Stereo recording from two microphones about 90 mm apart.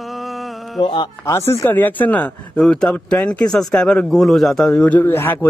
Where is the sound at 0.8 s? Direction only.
65° left (ahead or behind).